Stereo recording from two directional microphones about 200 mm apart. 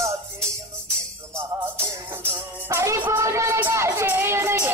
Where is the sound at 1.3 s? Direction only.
10° right (ahead or behind).